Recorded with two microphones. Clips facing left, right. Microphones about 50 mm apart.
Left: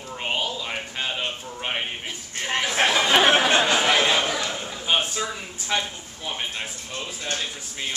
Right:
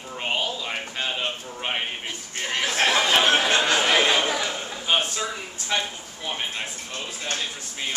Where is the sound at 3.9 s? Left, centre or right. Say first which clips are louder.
Even; centre.